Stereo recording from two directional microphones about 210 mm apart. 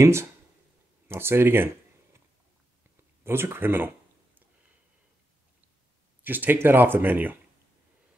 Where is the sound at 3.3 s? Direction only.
10° right (ahead or behind).